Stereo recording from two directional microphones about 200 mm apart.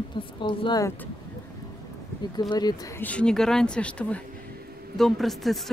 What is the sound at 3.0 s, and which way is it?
Speech, 5° left (ahead or behind).